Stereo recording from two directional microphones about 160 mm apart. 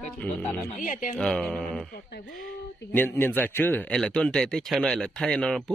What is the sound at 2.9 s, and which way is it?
Speech, 10° left (ahead or behind).